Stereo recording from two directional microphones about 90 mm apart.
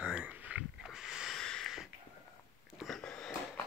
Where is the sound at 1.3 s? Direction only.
5° left (ahead or behind).